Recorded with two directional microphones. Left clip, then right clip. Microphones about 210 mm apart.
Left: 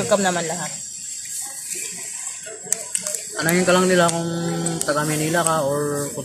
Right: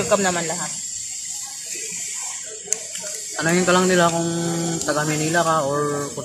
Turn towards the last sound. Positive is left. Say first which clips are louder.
# right 1 dB
turn(degrees=0)  # may be behind; listen again after turning